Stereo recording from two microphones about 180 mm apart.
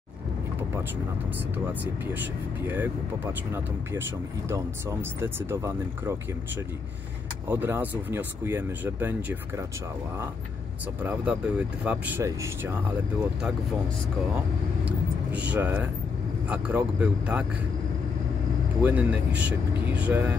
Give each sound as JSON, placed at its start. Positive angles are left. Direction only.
{"t": 1.7, "sound": "speech", "side_deg": -10}
{"t": 4.5, "sound": "speech", "side_deg": -15}
{"t": 7.4, "sound": "speech", "side_deg": -10}
{"t": 11.0, "sound": "speech", "side_deg": -10}
{"t": 14.9, "sound": "speech", "side_deg": -10}
{"t": 18.8, "sound": "speech", "side_deg": -10}